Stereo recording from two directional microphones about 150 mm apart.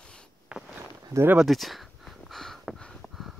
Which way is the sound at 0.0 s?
5° left (ahead or behind).